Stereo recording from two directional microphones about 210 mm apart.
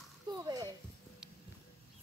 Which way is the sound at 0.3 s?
20° right (ahead or behind).